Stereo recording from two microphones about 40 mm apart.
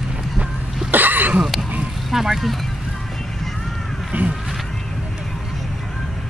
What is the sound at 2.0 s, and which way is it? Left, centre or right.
Speech, centre.